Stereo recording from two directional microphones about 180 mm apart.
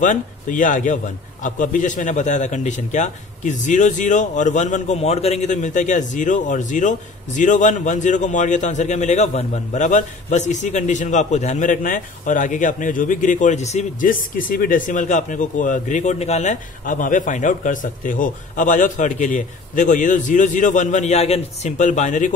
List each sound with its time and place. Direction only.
0.0 s a man's voice: 45° left (ahead or behind)